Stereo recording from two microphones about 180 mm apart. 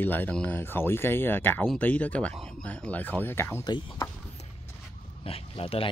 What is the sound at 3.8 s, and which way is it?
Speech, 25° left (ahead or behind).